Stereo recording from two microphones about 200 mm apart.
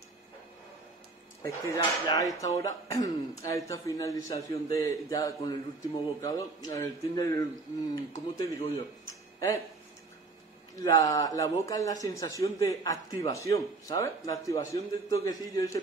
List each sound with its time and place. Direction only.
1.4 s a man's voice: 20° left (ahead or behind)
10.8 s a man's voice: 15° left (ahead or behind)